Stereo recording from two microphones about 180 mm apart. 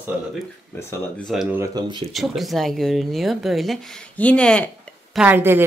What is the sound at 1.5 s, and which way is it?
Speech, 20° right (ahead or behind).